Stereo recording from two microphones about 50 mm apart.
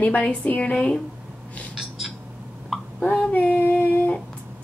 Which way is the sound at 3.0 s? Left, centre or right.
Left.